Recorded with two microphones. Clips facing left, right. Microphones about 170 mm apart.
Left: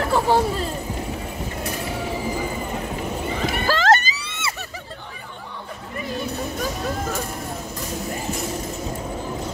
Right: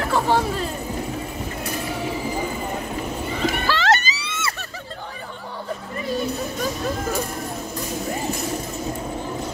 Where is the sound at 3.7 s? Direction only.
50° left (ahead or behind).